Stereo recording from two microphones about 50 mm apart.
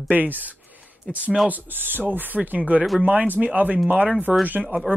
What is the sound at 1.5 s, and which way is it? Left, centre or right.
Speech, right.